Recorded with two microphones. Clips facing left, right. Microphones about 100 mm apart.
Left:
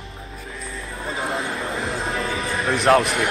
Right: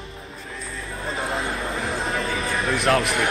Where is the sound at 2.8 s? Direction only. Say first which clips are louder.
Left 5 dB; 30° left (ahead or behind).